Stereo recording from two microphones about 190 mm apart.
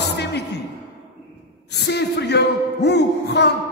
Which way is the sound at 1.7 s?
60° left (ahead or behind).